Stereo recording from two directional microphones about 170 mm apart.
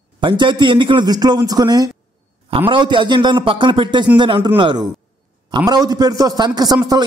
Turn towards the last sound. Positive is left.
turn(degrees=-25)  # may be behind; listen again after turning